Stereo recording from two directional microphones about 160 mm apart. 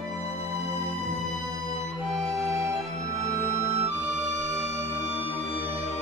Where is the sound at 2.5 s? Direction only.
20° right (ahead or behind).